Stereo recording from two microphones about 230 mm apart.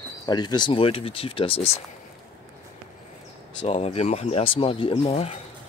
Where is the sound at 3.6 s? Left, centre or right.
Left.